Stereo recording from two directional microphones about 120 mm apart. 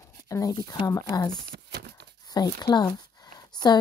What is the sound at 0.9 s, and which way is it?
Speech, 30° left (ahead or behind).